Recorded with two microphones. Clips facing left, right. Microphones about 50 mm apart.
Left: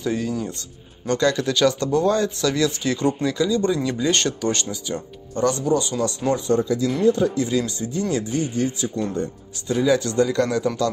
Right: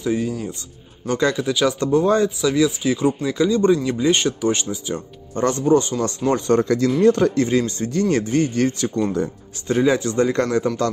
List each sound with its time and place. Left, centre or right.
0.0 s speech: centre
1.9 s speech: right
2.2 s speech: centre
3.3 s speech: right
5.3 s a man's voice: right
6.3 s speech: right
7.4 s a man's voice: right
9.7 s a man's voice: right
9.9 s a man's voice: right